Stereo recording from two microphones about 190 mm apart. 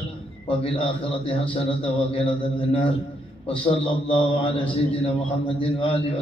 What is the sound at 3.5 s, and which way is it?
A man's voice, 30° left (ahead or behind).